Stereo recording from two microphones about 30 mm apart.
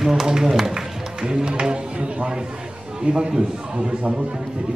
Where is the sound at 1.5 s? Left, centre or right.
Right.